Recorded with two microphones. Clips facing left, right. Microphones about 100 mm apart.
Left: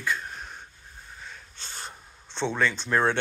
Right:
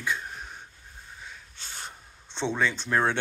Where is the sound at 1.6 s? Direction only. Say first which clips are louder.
Left 1 dB; 15° right (ahead or behind).